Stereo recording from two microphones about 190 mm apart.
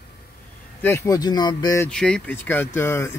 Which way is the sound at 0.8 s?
15° left (ahead or behind).